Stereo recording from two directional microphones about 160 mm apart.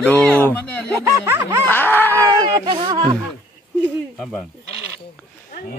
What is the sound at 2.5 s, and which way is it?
Speech, 30° right (ahead or behind).